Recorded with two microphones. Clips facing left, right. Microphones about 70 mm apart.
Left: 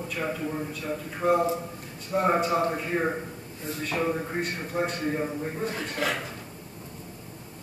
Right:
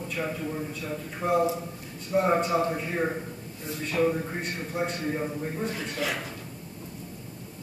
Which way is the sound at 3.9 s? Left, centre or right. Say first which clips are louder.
Right 2 dB; centre.